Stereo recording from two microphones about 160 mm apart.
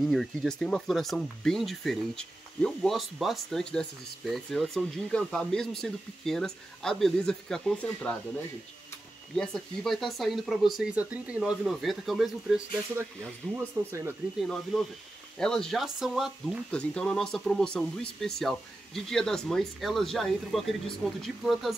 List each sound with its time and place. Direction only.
0.0 s speech: centre (ahead or behind)
9.3 s speech: centre (ahead or behind)
13.8 s speech: 20° right (ahead or behind)
14.4 s speech: centre (ahead or behind)